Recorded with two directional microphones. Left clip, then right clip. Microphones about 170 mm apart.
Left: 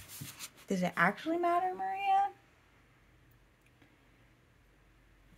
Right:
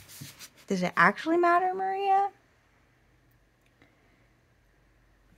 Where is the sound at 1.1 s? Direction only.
35° right (ahead or behind).